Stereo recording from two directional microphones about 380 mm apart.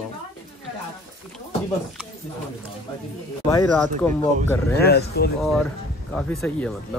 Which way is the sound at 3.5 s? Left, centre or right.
Centre.